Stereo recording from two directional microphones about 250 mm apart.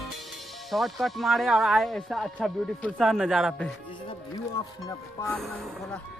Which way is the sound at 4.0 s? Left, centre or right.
Centre.